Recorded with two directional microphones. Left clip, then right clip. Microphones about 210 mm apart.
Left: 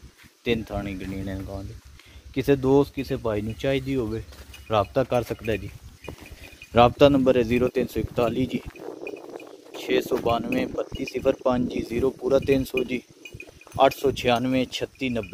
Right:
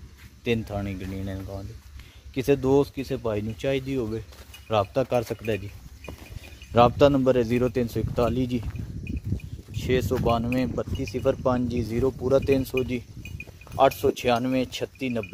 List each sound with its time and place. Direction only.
0.4 s a man's voice: centre (ahead or behind)
2.3 s a man's voice: 5° right (ahead or behind)
6.7 s a man's voice: 5° right (ahead or behind)
9.8 s a man's voice: centre (ahead or behind)
11.7 s speech: 50° right (ahead or behind)
12.0 s speech: 15° right (ahead or behind)